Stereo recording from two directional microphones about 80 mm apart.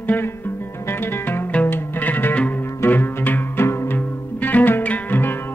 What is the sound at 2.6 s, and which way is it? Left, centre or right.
Music, left.